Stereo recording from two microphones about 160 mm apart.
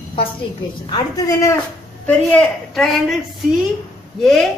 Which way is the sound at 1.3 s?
20° left (ahead or behind).